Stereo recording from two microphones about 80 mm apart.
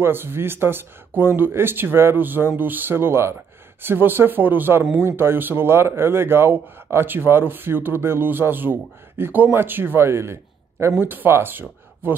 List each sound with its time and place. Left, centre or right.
0.0 s speech: right